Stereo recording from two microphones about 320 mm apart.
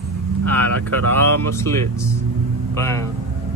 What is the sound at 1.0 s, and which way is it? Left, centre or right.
Speech, right.